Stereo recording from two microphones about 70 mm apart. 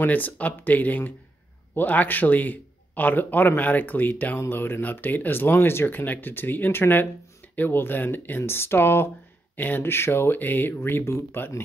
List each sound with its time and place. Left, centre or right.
0.0 s speech: left